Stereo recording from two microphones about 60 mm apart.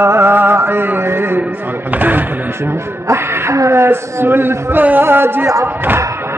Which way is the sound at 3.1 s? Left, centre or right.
Right.